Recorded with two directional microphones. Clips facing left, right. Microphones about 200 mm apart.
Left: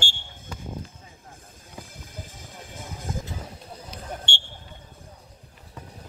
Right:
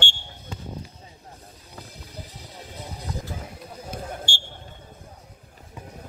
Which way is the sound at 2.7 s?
50° left (ahead or behind).